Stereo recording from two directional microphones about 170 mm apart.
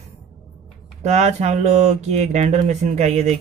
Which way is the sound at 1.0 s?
40° right (ahead or behind).